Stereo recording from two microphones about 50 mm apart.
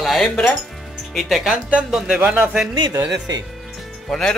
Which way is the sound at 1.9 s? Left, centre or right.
Centre.